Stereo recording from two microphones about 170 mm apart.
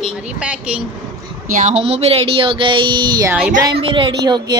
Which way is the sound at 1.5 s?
45° right (ahead or behind).